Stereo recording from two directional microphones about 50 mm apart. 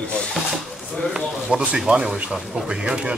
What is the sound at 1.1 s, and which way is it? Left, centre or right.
Speech, centre.